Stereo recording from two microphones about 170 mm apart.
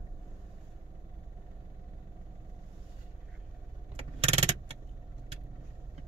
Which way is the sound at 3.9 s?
35° right (ahead or behind).